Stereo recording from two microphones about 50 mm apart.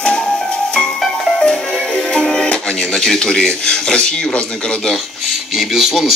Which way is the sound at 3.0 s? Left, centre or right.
Centre.